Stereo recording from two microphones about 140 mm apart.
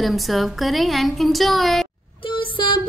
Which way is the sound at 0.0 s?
Centre (ahead or behind).